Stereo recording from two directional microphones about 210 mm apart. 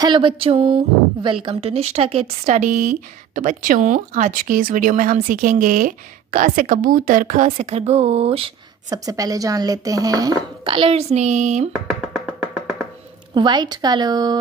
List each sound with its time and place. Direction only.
0.0 s a woman's voice: 25° right (ahead or behind)
11.7 s computer keyboard: 5° right (ahead or behind)
13.3 s speech: 20° right (ahead or behind)